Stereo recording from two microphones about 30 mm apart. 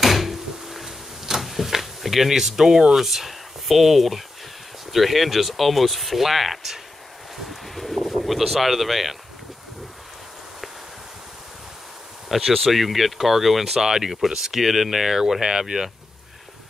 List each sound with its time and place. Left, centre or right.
0.0 s drawer open or close: centre
2.9 s speech: centre
7.6 s bird: centre
12.3 s speech: centre
13.8 s speech: right